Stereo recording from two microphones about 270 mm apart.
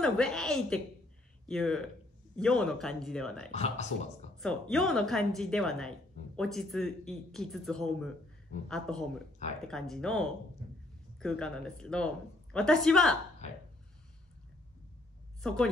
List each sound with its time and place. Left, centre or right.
0.0 s a woman's voice: centre
3.5 s speech: left
4.4 s a woman's voice: centre
15.4 s a woman's voice: centre